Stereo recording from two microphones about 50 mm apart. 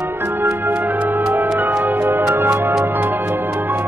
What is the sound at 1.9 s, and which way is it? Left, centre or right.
Music, right.